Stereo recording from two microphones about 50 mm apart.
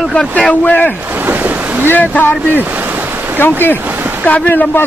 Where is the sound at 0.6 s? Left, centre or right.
Left.